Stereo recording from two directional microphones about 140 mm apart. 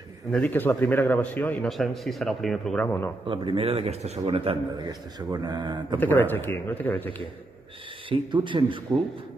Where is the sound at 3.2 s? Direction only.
35° right (ahead or behind).